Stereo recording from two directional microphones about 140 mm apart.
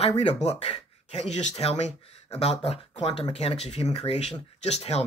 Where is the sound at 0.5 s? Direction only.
45° left (ahead or behind).